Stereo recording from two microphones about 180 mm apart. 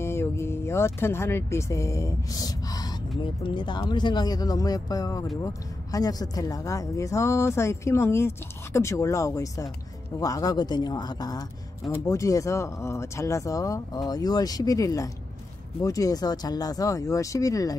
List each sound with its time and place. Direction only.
0.0 s speech: 15° left (ahead or behind)